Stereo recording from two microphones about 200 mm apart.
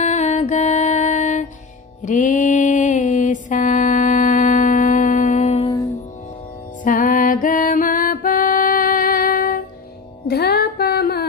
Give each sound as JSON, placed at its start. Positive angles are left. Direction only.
{"t": 0.0, "sound": "music", "side_deg": 35}
{"t": 2.0, "sound": "mantra", "side_deg": 40}
{"t": 6.8, "sound": "music", "side_deg": 40}